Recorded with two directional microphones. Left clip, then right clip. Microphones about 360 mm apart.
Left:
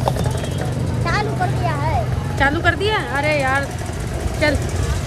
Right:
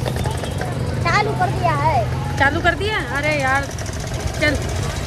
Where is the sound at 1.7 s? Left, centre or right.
Centre.